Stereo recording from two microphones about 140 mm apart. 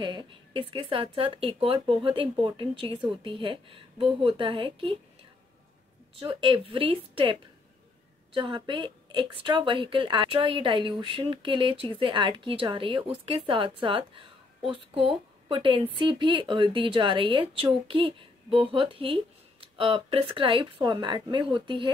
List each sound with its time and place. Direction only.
0.0 s a woman's voice: 35° right (ahead or behind)
6.1 s a woman's voice: 40° right (ahead or behind)